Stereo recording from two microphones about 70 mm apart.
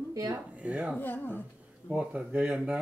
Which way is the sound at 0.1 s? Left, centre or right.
Right.